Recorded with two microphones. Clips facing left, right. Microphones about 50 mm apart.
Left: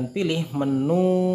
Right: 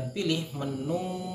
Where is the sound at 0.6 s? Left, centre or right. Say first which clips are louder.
Left 10 dB; left.